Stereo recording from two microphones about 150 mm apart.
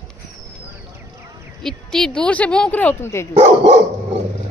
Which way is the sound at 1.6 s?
5° left (ahead or behind).